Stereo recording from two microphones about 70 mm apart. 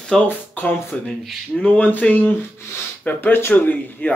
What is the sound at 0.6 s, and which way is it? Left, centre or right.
Speech, left.